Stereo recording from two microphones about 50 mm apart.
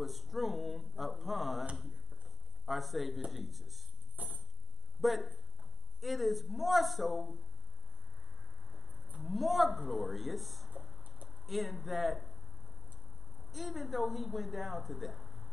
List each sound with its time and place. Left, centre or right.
0.0 s a sound: centre
2.6 s speech: centre
4.2 s a sound: right
5.0 s a woman's voice: centre
8.7 s livestock: centre
9.2 s a woman's voice: centre
11.1 s a sound: right
11.4 s a woman's voice: centre
13.5 s a woman's voice: centre